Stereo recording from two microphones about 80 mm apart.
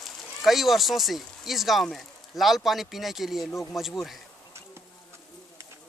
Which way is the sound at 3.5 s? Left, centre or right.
Left.